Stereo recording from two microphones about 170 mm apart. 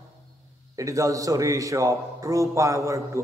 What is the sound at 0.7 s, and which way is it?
A man's voice, 20° right (ahead or behind).